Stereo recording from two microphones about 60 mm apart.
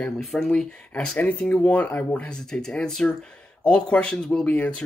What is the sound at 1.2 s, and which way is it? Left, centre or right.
Speech, left.